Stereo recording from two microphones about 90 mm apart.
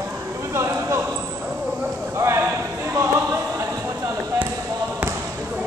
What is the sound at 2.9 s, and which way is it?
Choir, 35° right (ahead or behind).